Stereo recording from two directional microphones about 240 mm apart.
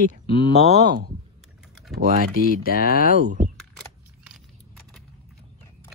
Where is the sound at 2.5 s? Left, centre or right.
Left.